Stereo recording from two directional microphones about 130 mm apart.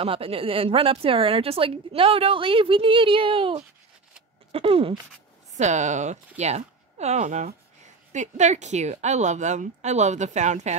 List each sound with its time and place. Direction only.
0.0 s a woman's voice: 45° right (ahead or behind)
5.6 s speech: 65° right (ahead or behind)